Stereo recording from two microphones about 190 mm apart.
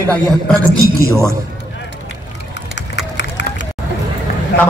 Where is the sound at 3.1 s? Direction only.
70° left (ahead or behind).